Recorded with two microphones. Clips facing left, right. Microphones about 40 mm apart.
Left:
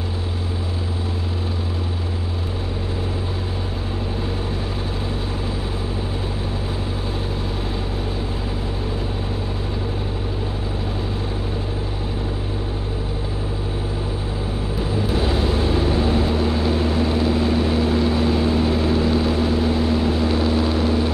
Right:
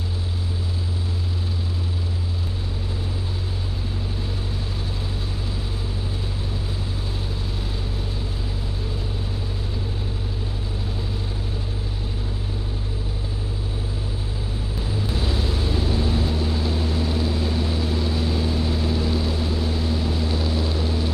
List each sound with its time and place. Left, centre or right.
15.0 s vehicle: left